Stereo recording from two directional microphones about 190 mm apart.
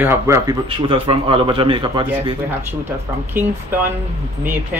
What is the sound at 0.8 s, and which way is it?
A man's voice, 25° right (ahead or behind).